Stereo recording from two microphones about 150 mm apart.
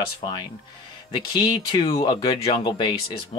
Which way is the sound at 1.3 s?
35° left (ahead or behind).